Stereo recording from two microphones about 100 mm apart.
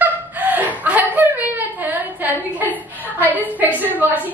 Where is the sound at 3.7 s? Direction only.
15° right (ahead or behind).